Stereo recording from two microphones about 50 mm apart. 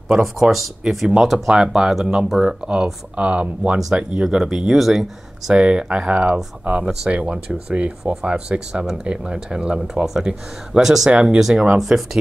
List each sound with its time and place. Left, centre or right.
0.1 s speech: centre
1.5 s speech: centre
3.7 s speech: centre
4.7 s speech: centre
5.5 s speech: right
10.2 s speech: centre
11.5 s speech: right
11.8 s speech: centre